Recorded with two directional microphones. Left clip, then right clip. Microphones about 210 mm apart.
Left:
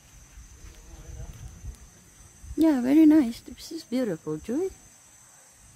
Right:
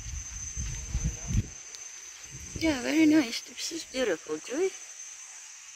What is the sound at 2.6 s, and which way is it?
Speech, 20° left (ahead or behind).